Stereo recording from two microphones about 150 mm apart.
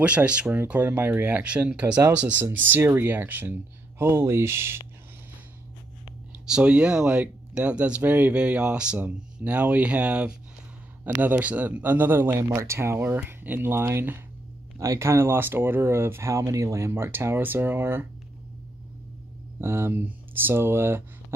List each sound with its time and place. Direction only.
0.0 s speech: 10° right (ahead or behind)
6.4 s speech: 5° right (ahead or behind)
19.6 s speech: 15° right (ahead or behind)